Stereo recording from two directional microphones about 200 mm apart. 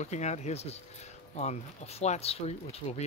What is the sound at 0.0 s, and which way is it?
Speech, 35° left (ahead or behind).